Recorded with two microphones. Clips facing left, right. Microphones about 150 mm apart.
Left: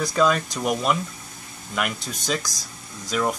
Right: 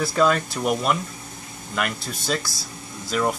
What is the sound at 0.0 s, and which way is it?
Speech, centre (ahead or behind).